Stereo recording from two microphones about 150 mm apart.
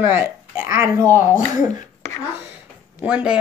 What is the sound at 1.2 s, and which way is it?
Speech, 55° left (ahead or behind).